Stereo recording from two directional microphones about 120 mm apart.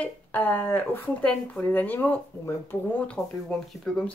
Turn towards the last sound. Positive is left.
turn(degrees=5)  # may be behind; listen again after turning